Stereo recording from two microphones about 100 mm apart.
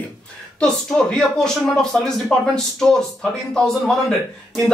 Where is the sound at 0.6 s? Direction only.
10° left (ahead or behind).